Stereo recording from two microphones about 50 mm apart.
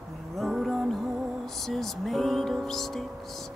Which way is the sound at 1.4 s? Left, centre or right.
Centre.